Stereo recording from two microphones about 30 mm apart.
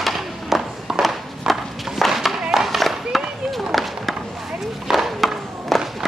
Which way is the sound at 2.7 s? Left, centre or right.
Centre.